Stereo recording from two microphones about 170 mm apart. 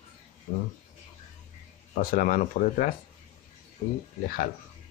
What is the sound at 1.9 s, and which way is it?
Speech, 55° left (ahead or behind).